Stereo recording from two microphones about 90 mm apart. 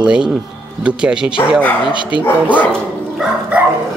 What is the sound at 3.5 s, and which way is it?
Dog, 15° right (ahead or behind).